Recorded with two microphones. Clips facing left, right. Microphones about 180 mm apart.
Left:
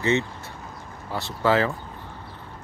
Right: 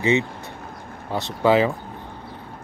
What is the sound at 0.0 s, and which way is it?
Speech, 15° right (ahead or behind).